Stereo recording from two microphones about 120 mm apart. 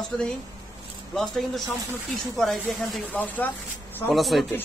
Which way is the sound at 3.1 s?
15° left (ahead or behind).